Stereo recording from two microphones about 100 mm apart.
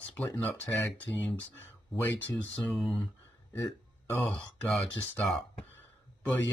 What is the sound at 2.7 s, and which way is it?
Speech, centre (ahead or behind).